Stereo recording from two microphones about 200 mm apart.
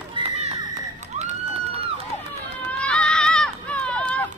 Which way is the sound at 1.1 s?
35° right (ahead or behind).